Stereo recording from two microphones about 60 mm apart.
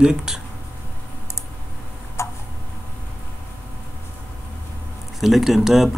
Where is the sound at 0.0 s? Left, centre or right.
Centre.